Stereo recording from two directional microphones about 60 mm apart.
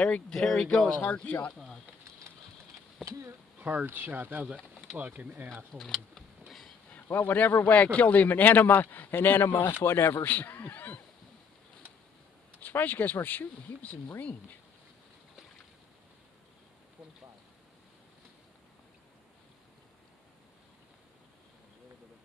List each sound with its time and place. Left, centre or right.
0.3 s speech: centre
1.0 s speech: left
1.5 s speech: centre
3.1 s speech: right
3.5 s a sound: right
3.8 s speech: right
5.8 s speech: centre
7.2 s speech: left
10.2 s speech: left
12.5 s speech: left